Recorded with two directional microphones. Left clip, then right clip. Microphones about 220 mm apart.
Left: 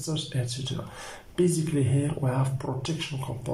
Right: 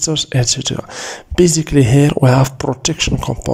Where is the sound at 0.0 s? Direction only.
45° right (ahead or behind).